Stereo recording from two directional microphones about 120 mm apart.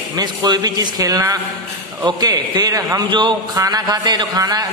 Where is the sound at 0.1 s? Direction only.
35° right (ahead or behind).